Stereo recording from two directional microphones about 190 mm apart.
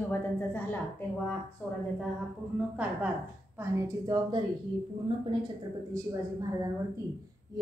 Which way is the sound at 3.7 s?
20° right (ahead or behind).